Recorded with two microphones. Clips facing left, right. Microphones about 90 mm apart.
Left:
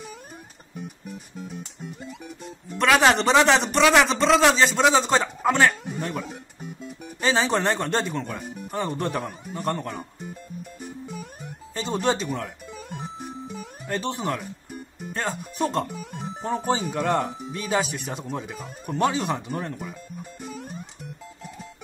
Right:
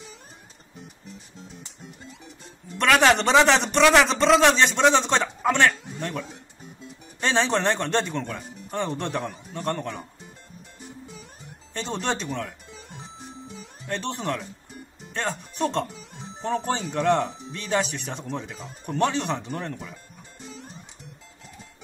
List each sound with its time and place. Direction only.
2.0 s music: 55° left (ahead or behind)
2.8 s a man's voice: centre (ahead or behind)
10.8 s music: 55° left (ahead or behind)
11.7 s a man's voice: 5° left (ahead or behind)
13.0 s music: 55° left (ahead or behind)
13.8 s a man's voice: 5° left (ahead or behind)
15.9 s music: 50° left (ahead or behind)
16.9 s a man's voice: 5° left (ahead or behind)
20.4 s music: 55° left (ahead or behind)